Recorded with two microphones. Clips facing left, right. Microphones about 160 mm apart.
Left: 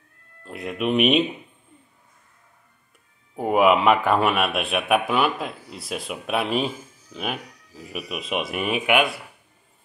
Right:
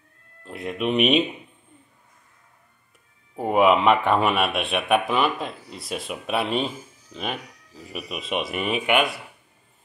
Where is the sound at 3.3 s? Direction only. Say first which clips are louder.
Even; centre (ahead or behind).